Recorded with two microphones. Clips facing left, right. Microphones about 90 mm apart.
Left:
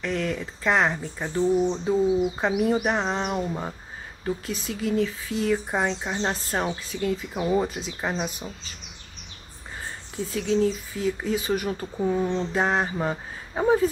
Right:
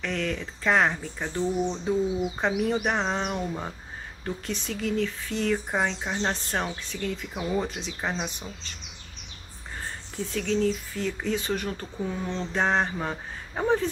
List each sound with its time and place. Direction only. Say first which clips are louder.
0.0 s speech: left 2 dB; 5° left (ahead or behind)
10.1 s speech: left 3 dB; 5° left (ahead or behind)
12.5 s speech: right 1 dB; 5° left (ahead or behind)